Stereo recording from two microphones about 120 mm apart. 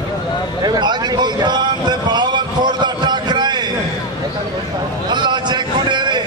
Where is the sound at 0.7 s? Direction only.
35° right (ahead or behind).